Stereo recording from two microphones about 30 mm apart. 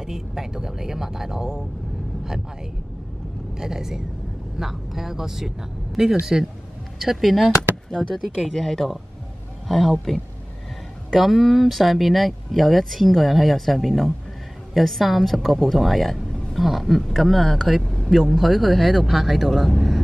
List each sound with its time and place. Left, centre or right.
0.0 s speech: centre
3.5 s speech: centre
7.0 s speech: centre
8.5 s speech: centre
11.1 s speech: centre